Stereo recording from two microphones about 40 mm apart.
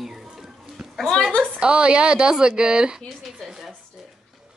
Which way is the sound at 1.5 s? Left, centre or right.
Right.